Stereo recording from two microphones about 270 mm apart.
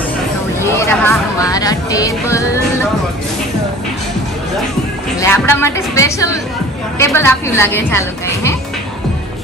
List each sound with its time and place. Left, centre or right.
0.7 s speech: centre
5.2 s a woman's voice: centre